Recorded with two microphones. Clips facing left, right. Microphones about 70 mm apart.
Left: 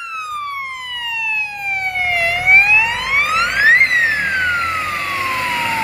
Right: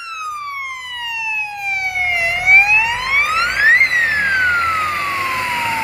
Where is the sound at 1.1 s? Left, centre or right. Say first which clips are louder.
Left 1 dB; centre.